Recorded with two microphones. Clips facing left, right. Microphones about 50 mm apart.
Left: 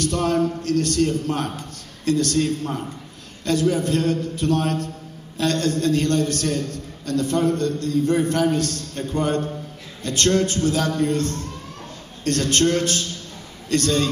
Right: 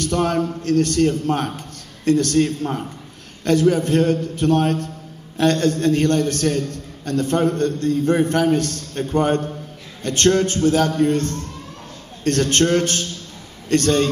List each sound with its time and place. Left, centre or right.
0.0 s a man's voice: right